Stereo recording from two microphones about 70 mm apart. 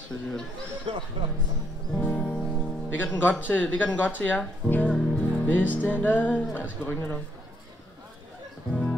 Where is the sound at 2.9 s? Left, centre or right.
Left.